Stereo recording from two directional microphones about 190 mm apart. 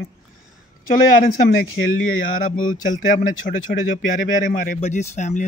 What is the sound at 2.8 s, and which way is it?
A man's voice, 45° left (ahead or behind).